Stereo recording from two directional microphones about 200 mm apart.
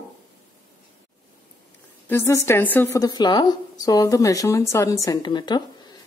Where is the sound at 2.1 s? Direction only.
10° left (ahead or behind).